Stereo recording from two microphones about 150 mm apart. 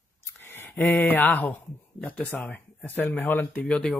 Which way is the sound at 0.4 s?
15° left (ahead or behind).